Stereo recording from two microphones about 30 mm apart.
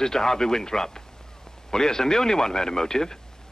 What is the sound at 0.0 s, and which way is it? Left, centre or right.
Speech, centre.